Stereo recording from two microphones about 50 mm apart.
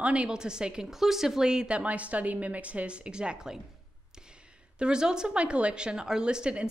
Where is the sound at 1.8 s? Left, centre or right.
Right.